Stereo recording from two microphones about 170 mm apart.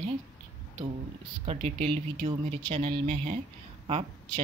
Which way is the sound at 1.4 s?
35° right (ahead or behind).